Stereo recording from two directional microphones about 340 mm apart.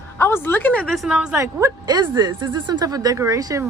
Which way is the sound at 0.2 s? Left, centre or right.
Centre.